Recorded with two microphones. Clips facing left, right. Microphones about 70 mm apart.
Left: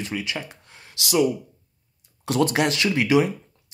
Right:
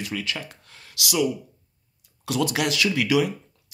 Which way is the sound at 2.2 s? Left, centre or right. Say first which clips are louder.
Left 3 dB; left.